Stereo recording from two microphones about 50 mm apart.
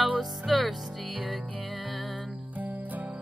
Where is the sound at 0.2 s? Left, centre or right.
Centre.